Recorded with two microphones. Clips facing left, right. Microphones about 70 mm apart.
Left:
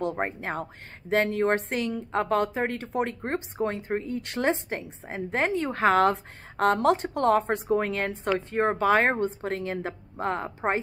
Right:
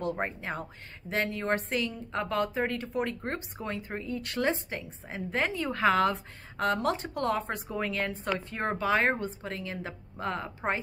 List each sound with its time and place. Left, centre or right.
0.0 s a woman's voice: left
7.7 s a woman's voice: left